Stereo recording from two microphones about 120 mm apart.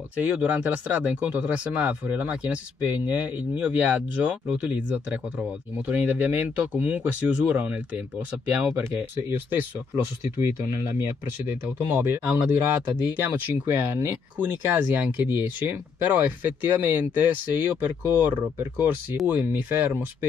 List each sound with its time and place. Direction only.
0.2 s speech: 10° right (ahead or behind)